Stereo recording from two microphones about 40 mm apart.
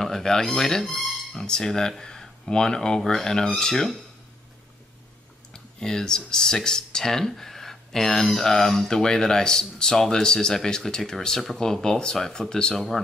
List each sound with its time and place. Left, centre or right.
0.0 s speech: centre
0.9 s a sound: centre
1.4 s speech: centre
5.5 s speech: centre